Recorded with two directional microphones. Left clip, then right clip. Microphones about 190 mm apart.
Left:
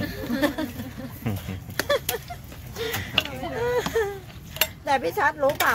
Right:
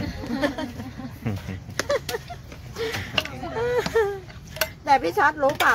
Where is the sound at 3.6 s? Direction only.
35° right (ahead or behind).